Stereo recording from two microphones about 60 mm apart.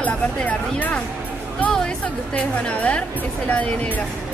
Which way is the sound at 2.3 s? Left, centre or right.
Left.